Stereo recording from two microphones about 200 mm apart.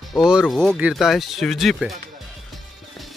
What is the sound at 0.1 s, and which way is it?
Speech, 5° right (ahead or behind).